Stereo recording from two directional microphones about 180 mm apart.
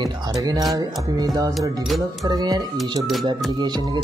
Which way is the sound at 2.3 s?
20° right (ahead or behind).